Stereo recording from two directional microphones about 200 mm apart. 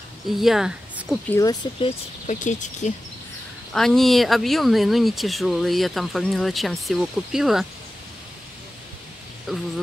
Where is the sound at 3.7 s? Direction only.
Centre (ahead or behind).